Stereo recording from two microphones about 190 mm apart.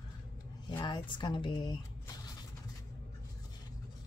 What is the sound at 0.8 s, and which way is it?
Speech, 25° left (ahead or behind).